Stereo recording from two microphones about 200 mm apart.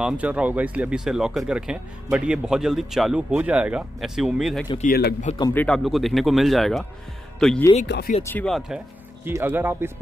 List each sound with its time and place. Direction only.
0.0 s speech: 5° right (ahead or behind)
5.4 s speech: 10° left (ahead or behind)
7.8 s speech: 55° left (ahead or behind)
8.2 s speech: 10° left (ahead or behind); by 9.9 s 10° right (ahead or behind)